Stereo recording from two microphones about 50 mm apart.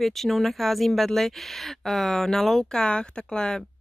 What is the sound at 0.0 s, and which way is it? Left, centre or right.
Speech, centre.